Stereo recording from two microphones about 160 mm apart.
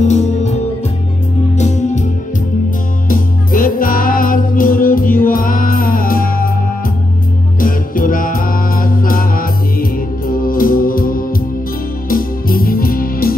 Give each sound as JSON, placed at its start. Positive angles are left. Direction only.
{"t": 0.1, "sound": "music", "side_deg": 45}
{"t": 1.6, "sound": "music", "side_deg": 45}
{"t": 3.1, "sound": "music", "side_deg": 60}
{"t": 7.6, "sound": "music", "side_deg": 60}